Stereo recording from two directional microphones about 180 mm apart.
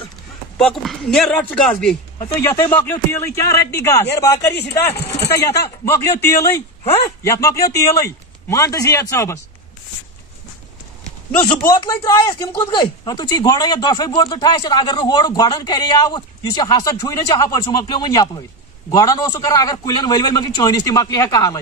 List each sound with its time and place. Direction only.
0.6 s a man's voice: centre (ahead or behind)
11.6 s speech: 20° left (ahead or behind)